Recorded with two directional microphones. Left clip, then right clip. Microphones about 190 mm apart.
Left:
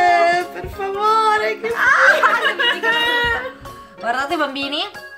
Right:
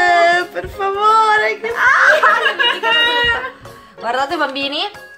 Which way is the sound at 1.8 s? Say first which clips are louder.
Right 2 dB; 15° left (ahead or behind).